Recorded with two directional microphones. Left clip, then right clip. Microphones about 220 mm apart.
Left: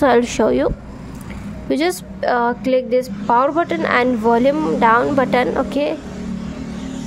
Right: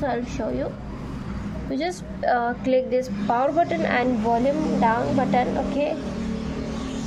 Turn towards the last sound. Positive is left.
turn(degrees=30)  # may be behind; listen again after turning